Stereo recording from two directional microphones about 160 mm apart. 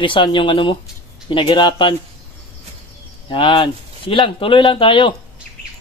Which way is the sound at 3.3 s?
30° left (ahead or behind).